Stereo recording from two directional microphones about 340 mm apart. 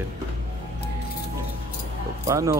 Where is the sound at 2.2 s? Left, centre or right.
Centre.